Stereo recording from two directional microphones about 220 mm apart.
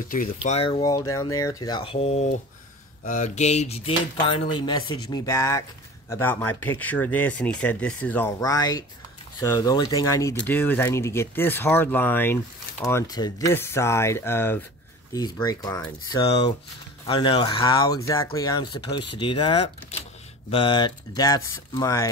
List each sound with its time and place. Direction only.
0.1 s speech: 35° left (ahead or behind); by 15.8 s 15° left (ahead or behind)
16.1 s speech: 25° left (ahead or behind)